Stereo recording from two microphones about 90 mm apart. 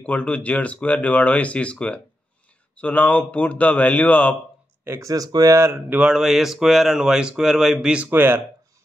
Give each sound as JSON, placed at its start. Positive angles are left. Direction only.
{"t": 0.0, "sound": "speech", "side_deg": 15}
{"t": 4.8, "sound": "speech", "side_deg": -35}
{"t": 5.9, "sound": "speech", "side_deg": -5}
{"t": 8.1, "sound": "speech", "side_deg": -20}